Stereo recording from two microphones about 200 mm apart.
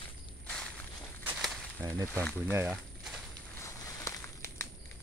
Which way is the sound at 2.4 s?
10° right (ahead or behind).